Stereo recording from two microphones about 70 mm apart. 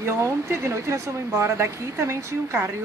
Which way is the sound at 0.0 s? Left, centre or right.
Right.